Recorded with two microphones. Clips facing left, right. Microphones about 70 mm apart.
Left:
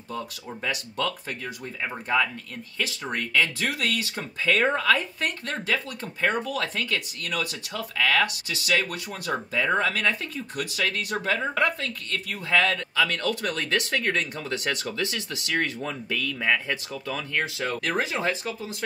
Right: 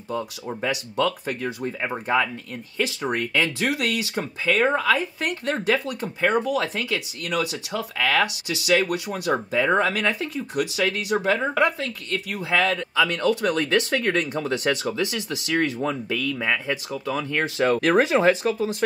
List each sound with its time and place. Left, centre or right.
0.1 s speech: right
16.3 s speech: centre
17.7 s speech: right